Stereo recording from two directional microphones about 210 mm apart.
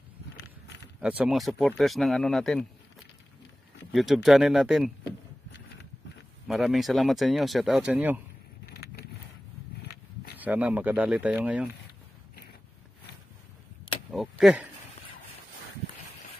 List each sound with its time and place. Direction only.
1.0 s speech: 5° right (ahead or behind)
3.9 s speech: centre (ahead or behind)
6.4 s speech: centre (ahead or behind)
8.6 s vehicle: 50° left (ahead or behind)
10.4 s speech: 10° right (ahead or behind)
14.1 s a sound: centre (ahead or behind)